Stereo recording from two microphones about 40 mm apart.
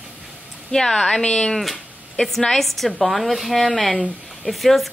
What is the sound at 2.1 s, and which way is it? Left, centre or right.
A woman's voice, centre.